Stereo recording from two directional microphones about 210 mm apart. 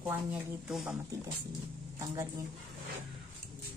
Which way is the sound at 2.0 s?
15° right (ahead or behind).